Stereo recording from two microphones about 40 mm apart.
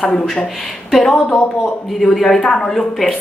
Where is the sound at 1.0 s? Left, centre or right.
Centre.